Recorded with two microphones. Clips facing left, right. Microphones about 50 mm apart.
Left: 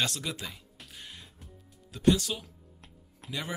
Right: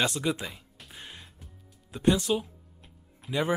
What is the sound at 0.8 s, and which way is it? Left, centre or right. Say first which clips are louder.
Music: right 2 dB; centre.